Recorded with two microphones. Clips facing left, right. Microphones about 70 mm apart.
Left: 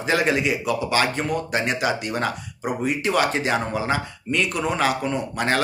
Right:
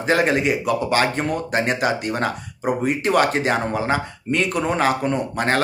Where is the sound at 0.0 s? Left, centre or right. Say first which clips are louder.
Right 3 dB; right.